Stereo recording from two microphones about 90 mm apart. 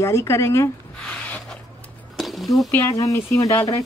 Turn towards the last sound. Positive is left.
turn(degrees=35)  # may be behind; listen again after turning